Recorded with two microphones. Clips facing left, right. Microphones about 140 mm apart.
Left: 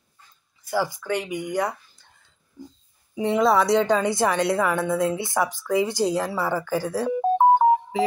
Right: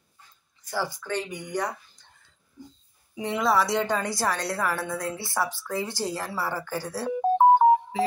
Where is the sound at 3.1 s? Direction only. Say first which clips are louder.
Left 5 dB; 25° left (ahead or behind).